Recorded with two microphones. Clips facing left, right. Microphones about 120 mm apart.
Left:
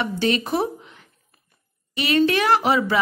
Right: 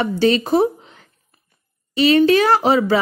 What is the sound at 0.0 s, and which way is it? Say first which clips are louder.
Speech: right 6 dB; 35° right (ahead or behind).